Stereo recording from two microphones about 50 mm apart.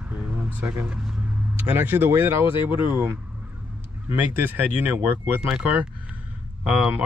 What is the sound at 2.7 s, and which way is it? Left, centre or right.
Speech, right.